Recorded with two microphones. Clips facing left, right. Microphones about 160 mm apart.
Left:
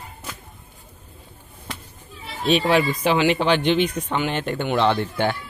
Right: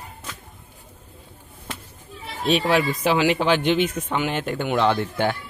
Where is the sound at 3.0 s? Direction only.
5° right (ahead or behind).